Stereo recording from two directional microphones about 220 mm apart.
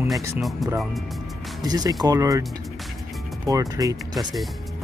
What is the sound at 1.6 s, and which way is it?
Speech, 15° right (ahead or behind).